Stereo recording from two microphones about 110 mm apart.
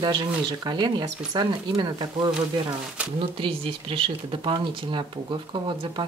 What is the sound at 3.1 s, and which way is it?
Speech, 50° right (ahead or behind).